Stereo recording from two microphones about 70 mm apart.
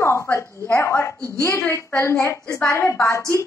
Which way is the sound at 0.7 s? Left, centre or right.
Left.